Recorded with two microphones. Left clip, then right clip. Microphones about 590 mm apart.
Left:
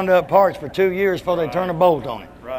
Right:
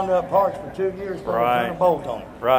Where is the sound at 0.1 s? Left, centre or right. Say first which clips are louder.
Left 6 dB; left.